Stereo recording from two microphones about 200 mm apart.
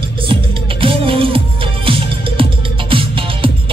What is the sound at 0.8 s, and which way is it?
Music, 25° right (ahead or behind).